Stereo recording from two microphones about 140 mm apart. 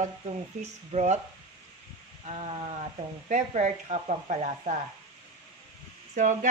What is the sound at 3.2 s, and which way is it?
Frying, 60° right (ahead or behind).